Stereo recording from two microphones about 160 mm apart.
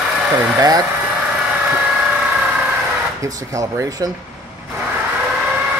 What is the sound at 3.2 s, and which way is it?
Speech, 20° right (ahead or behind).